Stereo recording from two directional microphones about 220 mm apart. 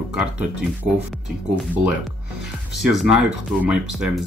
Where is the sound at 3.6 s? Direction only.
5° right (ahead or behind).